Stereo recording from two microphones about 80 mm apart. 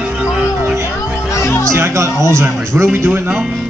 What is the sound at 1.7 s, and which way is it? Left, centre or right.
Speech, right.